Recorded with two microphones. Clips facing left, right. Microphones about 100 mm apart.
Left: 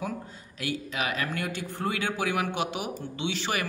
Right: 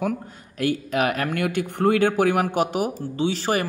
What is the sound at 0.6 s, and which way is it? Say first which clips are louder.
Speech: right 9 dB; 55° right (ahead or behind).